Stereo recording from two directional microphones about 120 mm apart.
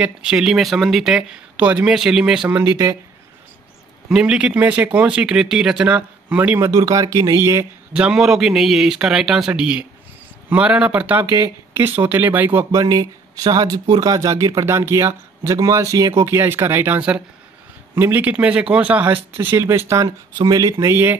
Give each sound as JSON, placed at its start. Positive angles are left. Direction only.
{"t": 0.0, "sound": "speech", "side_deg": -5}
{"t": 2.6, "sound": "speech", "side_deg": -25}
{"t": 4.1, "sound": "speech", "side_deg": -5}
{"t": 7.9, "sound": "speech", "side_deg": -5}
{"t": 11.3, "sound": "speech", "side_deg": -25}
{"t": 12.7, "sound": "speech", "side_deg": -30}
{"t": 19.3, "sound": "speech", "side_deg": -25}
{"t": 20.3, "sound": "speech", "side_deg": -35}